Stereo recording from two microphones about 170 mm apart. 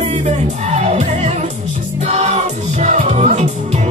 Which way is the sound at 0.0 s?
40° right (ahead or behind).